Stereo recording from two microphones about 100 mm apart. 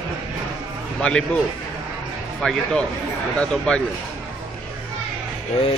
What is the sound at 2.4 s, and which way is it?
Speech, 5° left (ahead or behind).